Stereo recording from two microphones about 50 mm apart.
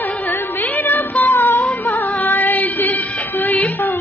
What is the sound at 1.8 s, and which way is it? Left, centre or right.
Music, left.